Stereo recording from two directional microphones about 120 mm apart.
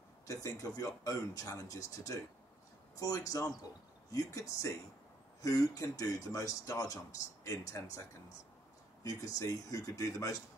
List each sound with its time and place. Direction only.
0.3 s speech: 30° left (ahead or behind)
9.0 s speech: 30° left (ahead or behind)